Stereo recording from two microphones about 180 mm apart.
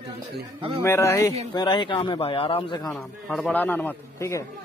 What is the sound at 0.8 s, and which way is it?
A man's voice, 15° left (ahead or behind).